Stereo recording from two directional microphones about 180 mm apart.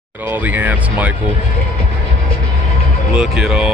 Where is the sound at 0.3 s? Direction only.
10° right (ahead or behind).